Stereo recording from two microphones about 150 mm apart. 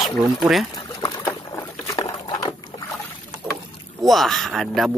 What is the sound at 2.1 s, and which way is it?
Patter, 25° left (ahead or behind).